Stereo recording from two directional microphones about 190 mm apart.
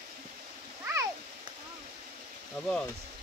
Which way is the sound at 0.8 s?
10° right (ahead or behind).